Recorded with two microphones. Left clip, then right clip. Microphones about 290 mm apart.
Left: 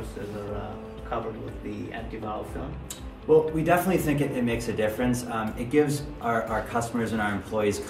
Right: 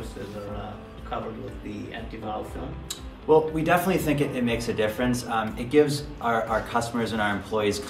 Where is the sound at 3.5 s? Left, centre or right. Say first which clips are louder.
Even; centre.